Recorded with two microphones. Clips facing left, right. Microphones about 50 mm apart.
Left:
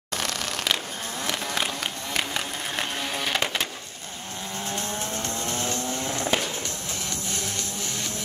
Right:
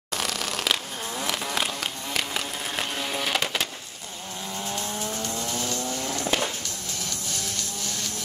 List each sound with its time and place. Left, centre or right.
0.1 s a sound: centre
4.6 s vehicle: left
7.2 s music: left